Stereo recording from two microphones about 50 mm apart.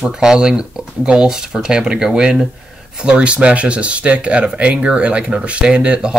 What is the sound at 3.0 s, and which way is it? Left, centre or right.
Speech, right.